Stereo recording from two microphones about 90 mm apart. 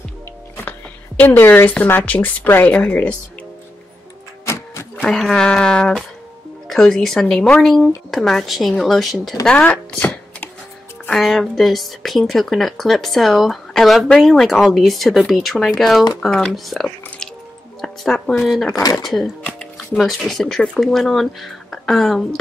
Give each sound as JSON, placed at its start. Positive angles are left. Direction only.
{"t": 1.2, "sound": "speech", "side_deg": 25}
{"t": 4.9, "sound": "speech", "side_deg": 5}
{"t": 9.7, "sound": "chopping", "side_deg": 20}
{"t": 11.1, "sound": "speech", "side_deg": 0}
{"t": 18.8, "sound": "speech", "side_deg": 45}
{"t": 19.0, "sound": "speech", "side_deg": 0}